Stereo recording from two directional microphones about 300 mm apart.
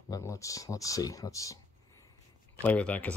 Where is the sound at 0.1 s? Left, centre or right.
Centre.